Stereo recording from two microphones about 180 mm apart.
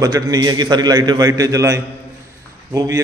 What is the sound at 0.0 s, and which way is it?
A man's voice, 20° right (ahead or behind).